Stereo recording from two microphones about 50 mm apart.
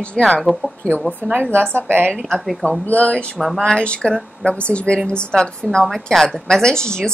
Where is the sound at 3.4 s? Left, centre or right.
Centre.